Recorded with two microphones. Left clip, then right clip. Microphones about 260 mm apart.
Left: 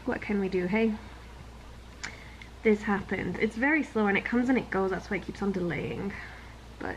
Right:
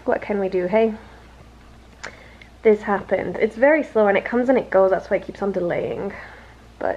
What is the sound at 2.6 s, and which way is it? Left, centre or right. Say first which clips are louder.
A woman's voice: right 9 dB; centre.